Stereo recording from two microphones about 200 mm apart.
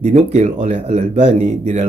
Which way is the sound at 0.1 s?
35° right (ahead or behind).